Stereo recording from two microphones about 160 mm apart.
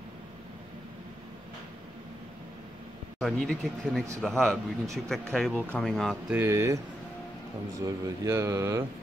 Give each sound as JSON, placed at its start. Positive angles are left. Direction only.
{"t": 3.2, "sound": "speech", "side_deg": 0}
{"t": 6.3, "sound": "speech", "side_deg": -15}
{"t": 7.8, "sound": "speech", "side_deg": -20}